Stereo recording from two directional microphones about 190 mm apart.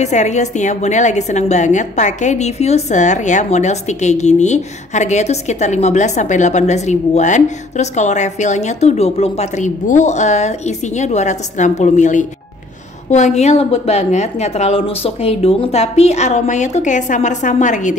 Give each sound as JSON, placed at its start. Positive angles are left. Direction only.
{"t": 0.0, "sound": "a woman's voice", "side_deg": 35}